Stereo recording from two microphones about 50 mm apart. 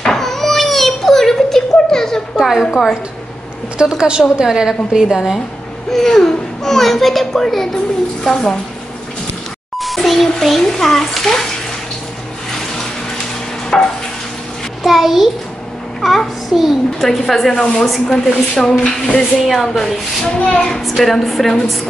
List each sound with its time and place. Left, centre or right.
0.0 s a sound: centre
2.6 s a woman's voice: centre
3.7 s a woman's voice: centre
5.9 s a child's voice: centre
9.8 s a child's voice: centre
13.7 s a sound: centre
14.8 s bathtub: centre
16.0 s a child's voice: centre
20.3 s a woman's voice: left
20.8 s a woman's voice: centre